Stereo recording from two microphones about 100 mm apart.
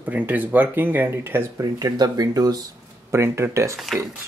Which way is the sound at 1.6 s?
35° right (ahead or behind).